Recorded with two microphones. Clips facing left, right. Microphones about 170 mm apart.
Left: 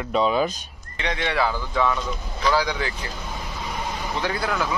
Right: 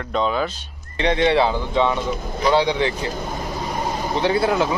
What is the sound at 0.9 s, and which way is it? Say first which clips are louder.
Speech: right 8 dB; 30° right (ahead or behind).